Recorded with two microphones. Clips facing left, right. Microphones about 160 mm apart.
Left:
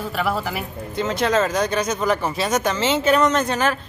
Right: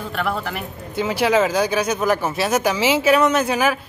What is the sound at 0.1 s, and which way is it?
Speech, 5° left (ahead or behind).